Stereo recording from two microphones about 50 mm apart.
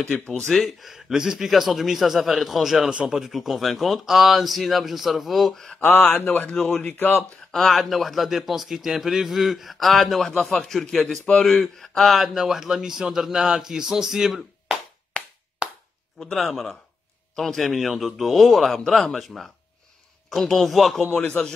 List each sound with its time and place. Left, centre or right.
0.5 s speech: centre
3.3 s speech: centre
5.8 s speech: left
6.6 s speech: left
7.2 s speech: centre
16.3 s speech: centre